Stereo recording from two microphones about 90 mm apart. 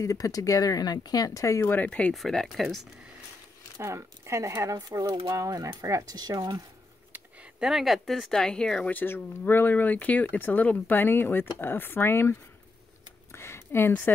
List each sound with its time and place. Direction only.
0.0 s speech: 40° left (ahead or behind)
1.7 s speech: 15° left (ahead or behind)
2.1 s speech: 5° left (ahead or behind)
3.7 s speech: 35° right (ahead or behind)
7.6 s speech: centre (ahead or behind)
8.9 s speech: 20° left (ahead or behind)
13.3 s a sound: 30° left (ahead or behind)